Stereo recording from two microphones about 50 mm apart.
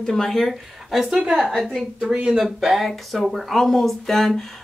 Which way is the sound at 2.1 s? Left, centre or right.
Centre.